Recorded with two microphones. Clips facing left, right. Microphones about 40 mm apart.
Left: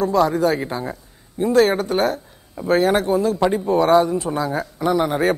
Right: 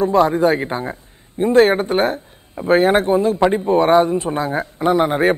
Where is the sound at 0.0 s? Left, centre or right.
Right.